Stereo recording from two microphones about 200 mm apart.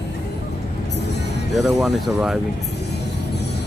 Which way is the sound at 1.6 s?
Centre (ahead or behind).